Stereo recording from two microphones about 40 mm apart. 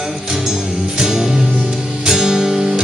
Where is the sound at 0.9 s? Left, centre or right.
Centre.